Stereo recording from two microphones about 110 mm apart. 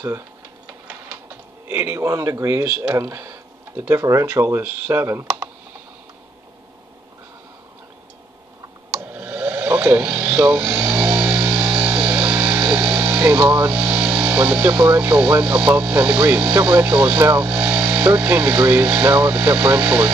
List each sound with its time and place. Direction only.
1.7 s speech: 20° right (ahead or behind)
9.0 s a sound: 15° right (ahead or behind)
13.5 s speech: 10° right (ahead or behind)
17.5 s speech: 10° right (ahead or behind)